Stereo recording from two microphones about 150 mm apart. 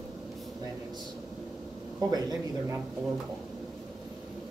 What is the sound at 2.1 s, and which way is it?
Speech, 25° right (ahead or behind).